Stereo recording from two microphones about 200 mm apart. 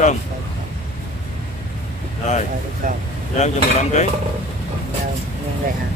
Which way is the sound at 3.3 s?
35° left (ahead or behind).